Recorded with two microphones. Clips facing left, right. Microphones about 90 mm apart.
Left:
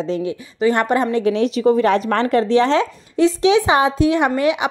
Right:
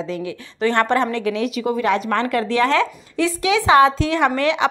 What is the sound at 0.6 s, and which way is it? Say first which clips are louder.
Speech: left 1 dB; 10° left (ahead or behind).